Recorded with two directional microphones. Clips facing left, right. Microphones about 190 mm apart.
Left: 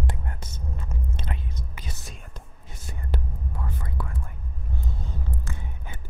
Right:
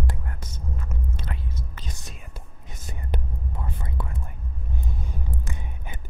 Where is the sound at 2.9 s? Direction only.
20° right (ahead or behind).